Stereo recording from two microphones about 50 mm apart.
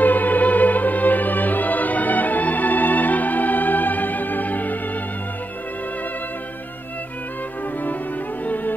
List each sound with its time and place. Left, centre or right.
0.0 s music: left